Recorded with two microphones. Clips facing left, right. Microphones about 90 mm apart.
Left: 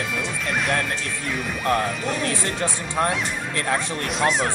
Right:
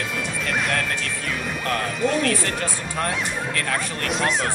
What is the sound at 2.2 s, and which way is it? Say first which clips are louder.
Speech: right 1 dB; 20° left (ahead or behind).